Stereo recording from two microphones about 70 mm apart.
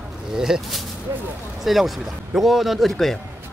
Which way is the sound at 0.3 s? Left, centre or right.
Centre.